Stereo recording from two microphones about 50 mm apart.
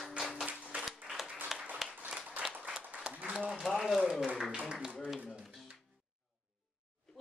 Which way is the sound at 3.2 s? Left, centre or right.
Right.